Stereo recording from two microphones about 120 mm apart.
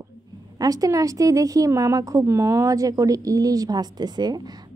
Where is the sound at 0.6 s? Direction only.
30° right (ahead or behind).